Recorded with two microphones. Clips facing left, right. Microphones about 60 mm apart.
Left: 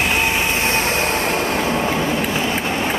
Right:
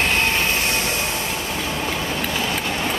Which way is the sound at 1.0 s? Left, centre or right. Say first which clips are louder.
Left 6 dB; left.